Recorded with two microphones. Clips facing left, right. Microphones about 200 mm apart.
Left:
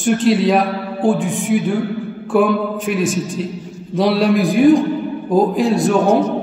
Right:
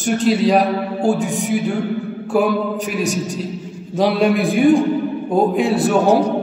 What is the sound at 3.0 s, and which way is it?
Speech, 40° right (ahead or behind).